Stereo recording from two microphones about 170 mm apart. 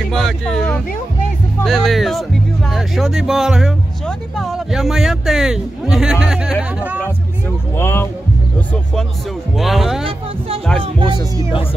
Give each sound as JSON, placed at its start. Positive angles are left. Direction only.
{"t": 0.1, "sound": "a sound", "side_deg": 5}
{"t": 1.6, "sound": "a man's voice", "side_deg": 0}
{"t": 7.7, "sound": "speech", "side_deg": 15}
{"t": 9.6, "sound": "a man's voice", "side_deg": 0}
{"t": 10.8, "sound": "speech", "side_deg": -30}